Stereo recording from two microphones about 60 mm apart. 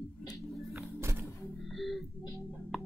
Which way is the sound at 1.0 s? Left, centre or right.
Right.